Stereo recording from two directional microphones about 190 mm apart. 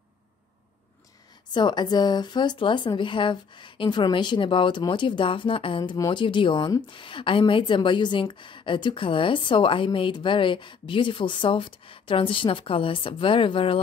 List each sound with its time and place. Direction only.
1.5 s speech: 25° left (ahead or behind)